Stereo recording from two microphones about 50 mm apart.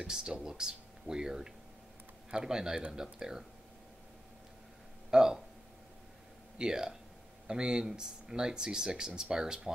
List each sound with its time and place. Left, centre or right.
0.0 s speech: centre
5.1 s speech: centre
6.6 s speech: centre